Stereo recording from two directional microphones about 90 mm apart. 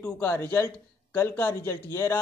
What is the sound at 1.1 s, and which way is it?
Speech, 25° left (ahead or behind).